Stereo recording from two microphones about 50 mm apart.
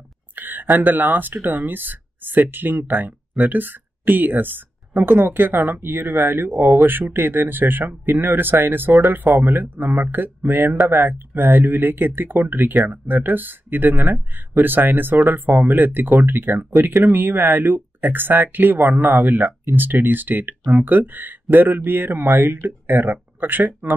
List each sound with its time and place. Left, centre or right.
0.4 s speech: right